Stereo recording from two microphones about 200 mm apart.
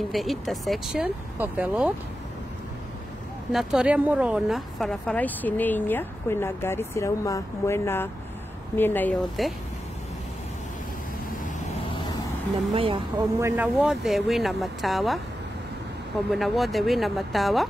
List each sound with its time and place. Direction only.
0.1 s speech: centre (ahead or behind)
3.5 s speech: 5° right (ahead or behind)
12.7 s speech: 25° right (ahead or behind)
13.4 s speech: 15° right (ahead or behind)
13.7 s speech: centre (ahead or behind)
16.3 s speech: centre (ahead or behind)